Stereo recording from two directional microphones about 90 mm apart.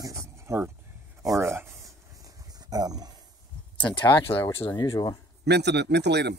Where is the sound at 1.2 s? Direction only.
35° right (ahead or behind).